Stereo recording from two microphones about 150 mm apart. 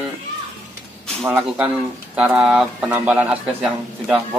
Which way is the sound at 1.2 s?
10° right (ahead or behind).